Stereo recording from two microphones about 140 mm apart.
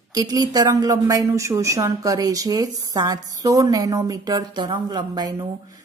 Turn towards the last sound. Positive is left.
turn(degrees=-30)  # may be behind; listen again after turning